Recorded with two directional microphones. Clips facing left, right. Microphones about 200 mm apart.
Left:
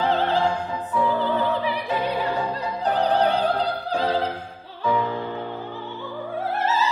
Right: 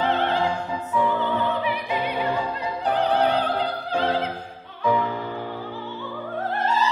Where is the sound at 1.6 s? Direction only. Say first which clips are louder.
Even; 35° left (ahead or behind).